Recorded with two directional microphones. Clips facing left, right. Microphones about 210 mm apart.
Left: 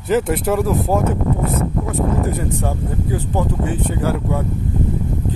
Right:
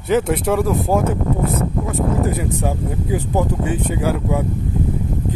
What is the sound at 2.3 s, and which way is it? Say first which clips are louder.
Speech: right 1 dB; 15° right (ahead or behind).